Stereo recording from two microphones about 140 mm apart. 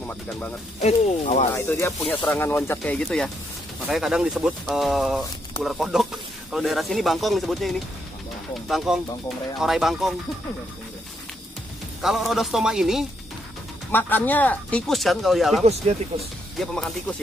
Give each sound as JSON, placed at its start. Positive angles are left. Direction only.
{"t": 0.0, "sound": "speech", "side_deg": 10}
{"t": 0.7, "sound": "speech", "side_deg": 50}
{"t": 1.5, "sound": "speech", "side_deg": 20}
{"t": 12.0, "sound": "speech", "side_deg": 0}
{"t": 13.9, "sound": "speech", "side_deg": 15}